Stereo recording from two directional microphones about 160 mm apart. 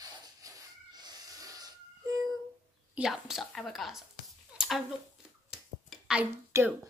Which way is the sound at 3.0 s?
Centre (ahead or behind).